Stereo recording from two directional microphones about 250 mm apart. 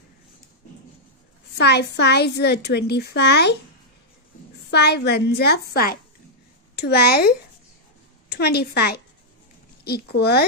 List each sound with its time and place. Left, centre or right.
1.6 s a woman's voice: left
4.6 s a woman's voice: left